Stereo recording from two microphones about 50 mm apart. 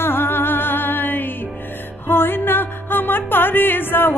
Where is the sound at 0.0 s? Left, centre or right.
Left.